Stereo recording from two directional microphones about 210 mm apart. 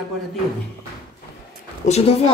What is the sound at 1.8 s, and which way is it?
Speech, 30° left (ahead or behind).